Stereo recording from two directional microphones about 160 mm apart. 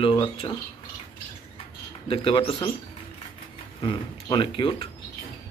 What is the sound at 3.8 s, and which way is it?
Speech, 30° left (ahead or behind).